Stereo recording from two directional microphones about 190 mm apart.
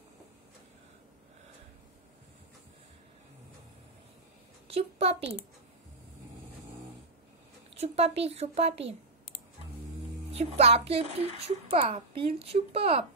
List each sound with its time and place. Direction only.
4.6 s a child's voice: 30° right (ahead or behind)
7.7 s a child's voice: 35° right (ahead or behind)
10.3 s a child's voice: 35° right (ahead or behind)